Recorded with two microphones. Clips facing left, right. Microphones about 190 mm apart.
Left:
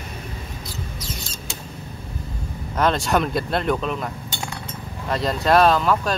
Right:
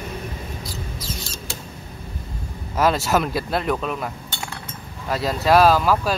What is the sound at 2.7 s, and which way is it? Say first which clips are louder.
Speech: right 1 dB; 5° right (ahead or behind).